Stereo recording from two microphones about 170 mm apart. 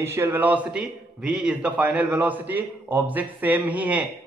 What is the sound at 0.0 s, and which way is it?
A man's voice, 15° right (ahead or behind).